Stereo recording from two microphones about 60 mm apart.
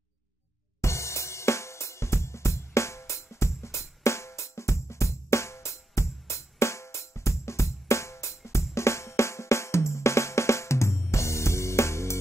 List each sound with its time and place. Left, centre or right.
0.7 s hi-hat: left